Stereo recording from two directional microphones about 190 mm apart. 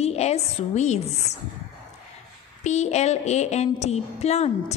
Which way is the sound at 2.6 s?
35° left (ahead or behind).